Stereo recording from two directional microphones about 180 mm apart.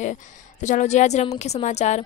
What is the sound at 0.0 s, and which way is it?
Speech, 40° left (ahead or behind).